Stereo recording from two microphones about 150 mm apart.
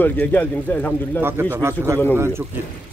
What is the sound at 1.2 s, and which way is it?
A man's voice, 15° right (ahead or behind).